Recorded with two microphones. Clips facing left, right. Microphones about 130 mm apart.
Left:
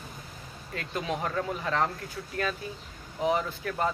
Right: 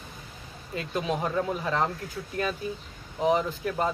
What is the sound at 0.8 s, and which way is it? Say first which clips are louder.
Speech: right 3 dB; 20° right (ahead or behind).